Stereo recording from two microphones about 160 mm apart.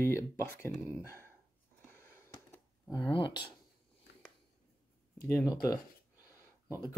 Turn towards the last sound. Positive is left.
turn(degrees=20)  # may be behind; listen again after turning